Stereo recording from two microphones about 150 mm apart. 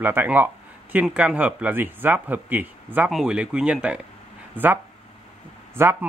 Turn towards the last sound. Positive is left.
turn(degrees=-15)  # may be behind; listen again after turning